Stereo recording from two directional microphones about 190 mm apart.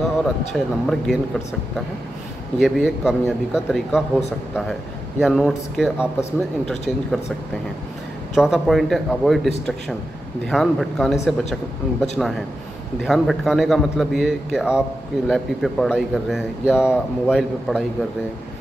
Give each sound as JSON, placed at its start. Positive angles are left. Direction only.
{"t": 0.0, "sound": "a man's voice", "side_deg": 0}
{"t": 2.6, "sound": "a man's voice", "side_deg": -5}
{"t": 5.2, "sound": "a man's voice", "side_deg": 0}
{"t": 8.4, "sound": "a man's voice", "side_deg": 0}
{"t": 10.5, "sound": "a man's voice", "side_deg": 0}